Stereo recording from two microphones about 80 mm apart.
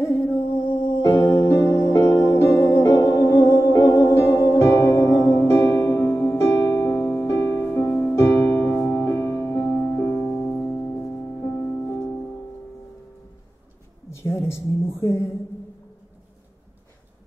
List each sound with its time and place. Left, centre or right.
0.0 s music: left
9.1 s music: left
9.7 s music: left
14.1 s a sound: left